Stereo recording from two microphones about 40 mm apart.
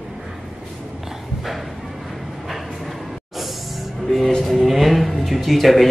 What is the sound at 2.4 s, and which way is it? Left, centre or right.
Music, centre.